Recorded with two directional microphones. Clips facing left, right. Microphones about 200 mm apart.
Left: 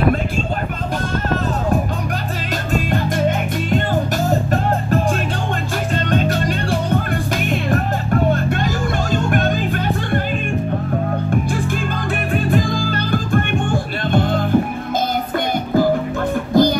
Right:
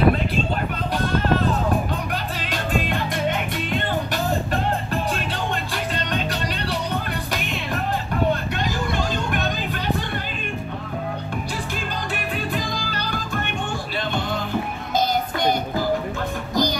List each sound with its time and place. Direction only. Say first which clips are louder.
2.7 s music: left 5 dB; 45° left (ahead or behind)
6.0 s music: left 7 dB; 45° left (ahead or behind)
12.4 s music: left 9 dB; 50° left (ahead or behind)
16.5 s music: left 9 dB; 55° left (ahead or behind)